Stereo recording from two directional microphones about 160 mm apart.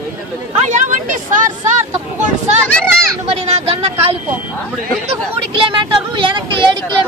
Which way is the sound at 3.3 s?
40° right (ahead or behind).